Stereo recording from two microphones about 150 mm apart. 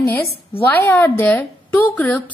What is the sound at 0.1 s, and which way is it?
A woman's voice, 10° left (ahead or behind).